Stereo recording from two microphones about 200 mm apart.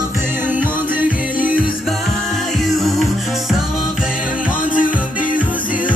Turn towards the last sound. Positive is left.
turn(degrees=40)  # may be behind; listen again after turning